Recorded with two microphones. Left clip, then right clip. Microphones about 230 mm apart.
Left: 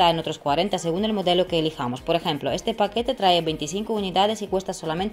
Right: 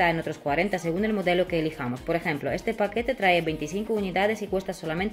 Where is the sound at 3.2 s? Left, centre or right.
Centre.